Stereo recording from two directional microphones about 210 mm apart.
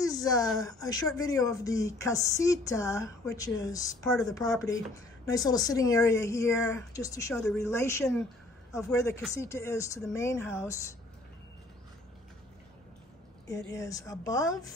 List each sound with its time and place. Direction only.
0.0 s a sound: 15° left (ahead or behind)
0.6 s speech: 15° left (ahead or behind)
13.5 s a woman's voice: 55° left (ahead or behind)
13.7 s speech: 15° left (ahead or behind)